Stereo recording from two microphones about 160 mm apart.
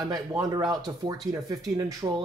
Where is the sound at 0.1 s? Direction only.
25° right (ahead or behind).